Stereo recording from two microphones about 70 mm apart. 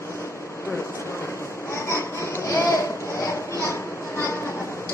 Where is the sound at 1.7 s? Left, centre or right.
Left.